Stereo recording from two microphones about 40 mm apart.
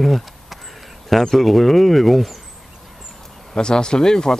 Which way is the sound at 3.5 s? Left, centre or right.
Centre.